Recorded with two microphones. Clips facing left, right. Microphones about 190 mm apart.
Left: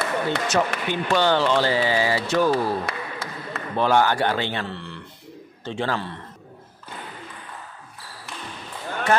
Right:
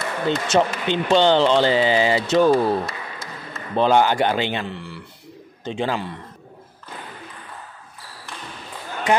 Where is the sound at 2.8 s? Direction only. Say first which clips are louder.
Left 1 dB; 65° left (ahead or behind).